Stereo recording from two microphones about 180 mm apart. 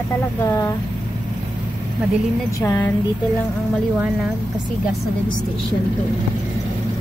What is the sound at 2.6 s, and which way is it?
Speech, 15° left (ahead or behind).